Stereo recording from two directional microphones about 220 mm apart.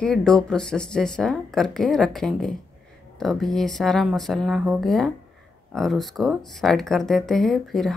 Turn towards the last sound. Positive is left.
turn(degrees=0)  # may be behind; listen again after turning